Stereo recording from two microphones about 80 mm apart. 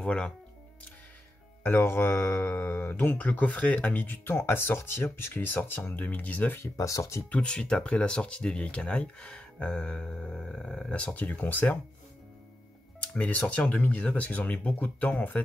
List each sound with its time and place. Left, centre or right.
0.0 s speech: centre
1.7 s speech: left
6.6 s speech: left
7.2 s speech: centre
13.0 s music: centre
13.6 s speech: centre